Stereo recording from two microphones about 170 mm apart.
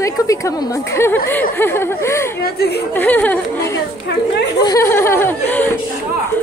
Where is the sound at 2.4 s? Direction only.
70° left (ahead or behind).